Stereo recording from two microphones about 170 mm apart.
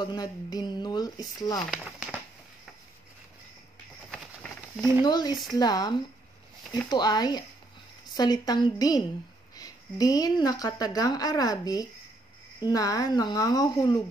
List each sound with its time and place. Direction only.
0.0 s speech: 25° left (ahead or behind)
1.7 s speech: centre (ahead or behind)
4.1 s a sound: 5° left (ahead or behind)
5.0 s speech: 25° left (ahead or behind)
9.6 s a sound: 20° left (ahead or behind)
10.4 s speech: 20° left (ahead or behind)